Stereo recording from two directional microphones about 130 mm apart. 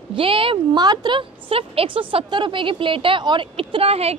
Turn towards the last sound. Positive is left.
turn(degrees=-50)  # may be behind; listen again after turning